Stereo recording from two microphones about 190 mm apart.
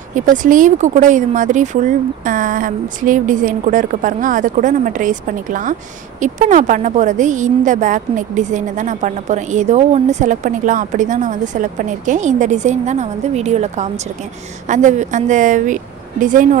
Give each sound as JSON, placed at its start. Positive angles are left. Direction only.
{"t": 0.1, "sound": "a woman's voice", "side_deg": -45}